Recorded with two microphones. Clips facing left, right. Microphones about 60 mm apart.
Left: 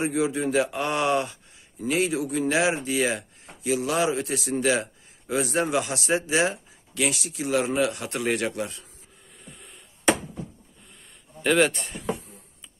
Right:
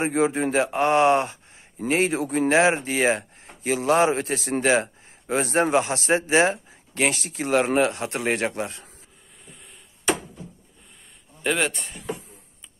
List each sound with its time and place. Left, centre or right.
0.0 s speech: right
7.8 s speech: right
11.4 s a man's voice: centre